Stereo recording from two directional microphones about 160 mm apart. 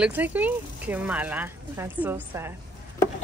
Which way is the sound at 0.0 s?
10° right (ahead or behind).